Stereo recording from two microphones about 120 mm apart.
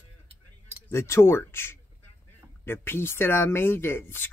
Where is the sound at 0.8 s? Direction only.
20° left (ahead or behind).